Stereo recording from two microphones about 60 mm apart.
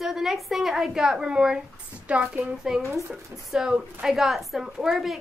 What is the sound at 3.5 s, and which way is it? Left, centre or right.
A woman's voice, centre.